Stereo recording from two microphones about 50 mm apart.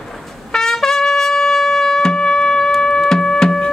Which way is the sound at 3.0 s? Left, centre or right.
Centre.